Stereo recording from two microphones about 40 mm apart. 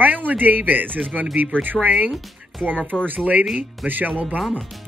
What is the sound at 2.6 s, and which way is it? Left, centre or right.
Speech, right.